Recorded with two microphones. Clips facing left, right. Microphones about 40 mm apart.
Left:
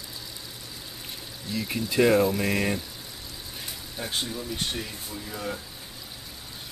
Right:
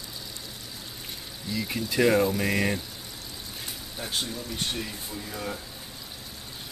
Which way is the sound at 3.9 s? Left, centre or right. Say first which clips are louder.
Left 1 dB; centre.